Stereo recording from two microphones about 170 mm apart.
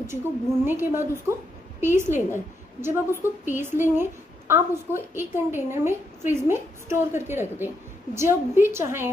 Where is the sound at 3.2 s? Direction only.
15° right (ahead or behind).